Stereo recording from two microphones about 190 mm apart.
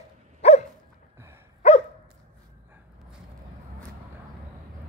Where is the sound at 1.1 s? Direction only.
15° right (ahead or behind).